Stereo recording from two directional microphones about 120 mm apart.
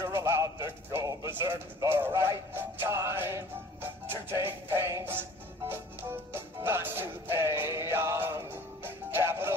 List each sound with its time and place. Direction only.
0.0 s speech: 20° right (ahead or behind)
1.8 s music: 20° right (ahead or behind)
6.3 s music: 20° right (ahead or behind)